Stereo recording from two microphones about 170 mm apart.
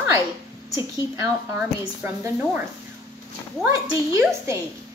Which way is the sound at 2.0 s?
10° right (ahead or behind).